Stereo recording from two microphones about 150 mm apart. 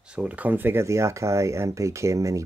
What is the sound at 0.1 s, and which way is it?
Speech, 10° right (ahead or behind).